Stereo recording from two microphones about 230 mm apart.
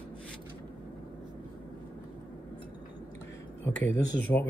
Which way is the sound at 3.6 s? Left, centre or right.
Centre.